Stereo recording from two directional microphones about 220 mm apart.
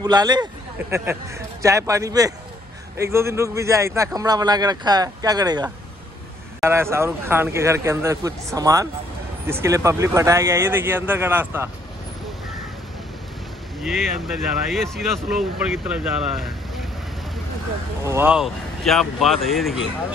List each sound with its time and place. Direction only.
0.0 s speech: 20° right (ahead or behind)
13.8 s speech: centre (ahead or behind)
18.0 s speech: 10° right (ahead or behind)